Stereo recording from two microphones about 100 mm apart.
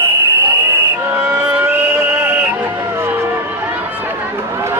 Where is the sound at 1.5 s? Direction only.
20° right (ahead or behind).